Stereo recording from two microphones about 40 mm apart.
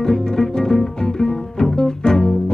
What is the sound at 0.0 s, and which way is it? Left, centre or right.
Music, centre.